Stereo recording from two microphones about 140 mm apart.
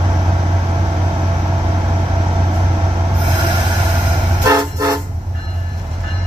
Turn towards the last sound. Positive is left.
turn(degrees=-25)  # may be behind; listen again after turning